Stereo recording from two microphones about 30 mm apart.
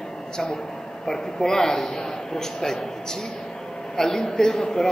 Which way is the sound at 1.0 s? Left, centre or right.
Centre.